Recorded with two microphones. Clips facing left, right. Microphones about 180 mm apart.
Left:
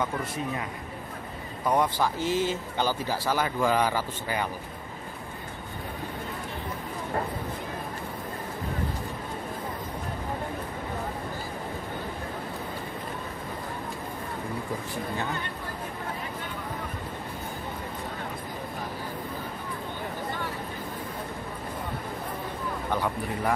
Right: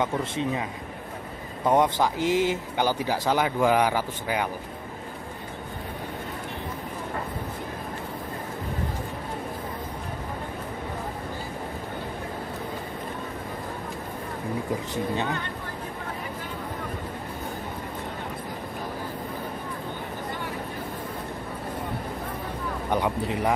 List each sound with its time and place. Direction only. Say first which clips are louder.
0.0 s speech: right 4 dB; 25° right (ahead or behind)
1.7 s speech: right 3 dB; 20° right (ahead or behind)
22.9 s speech: right 6 dB; 20° right (ahead or behind)